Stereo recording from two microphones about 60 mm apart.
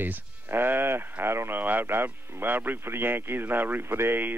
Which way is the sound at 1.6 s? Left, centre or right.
Right.